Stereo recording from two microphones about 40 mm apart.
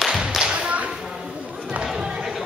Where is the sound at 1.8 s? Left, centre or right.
Centre.